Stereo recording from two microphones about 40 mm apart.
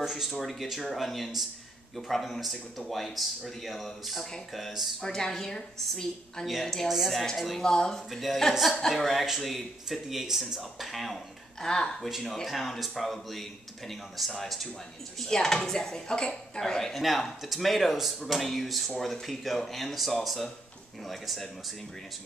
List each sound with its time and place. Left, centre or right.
0.0 s speech: centre
5.0 s speech: centre
6.4 s speech: centre
7.6 s speech: centre
8.1 s speech: centre
11.6 s speech: centre
12.0 s speech: centre
17.0 s speech: centre